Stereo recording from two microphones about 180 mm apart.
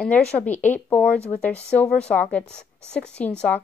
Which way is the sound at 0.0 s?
10° left (ahead or behind).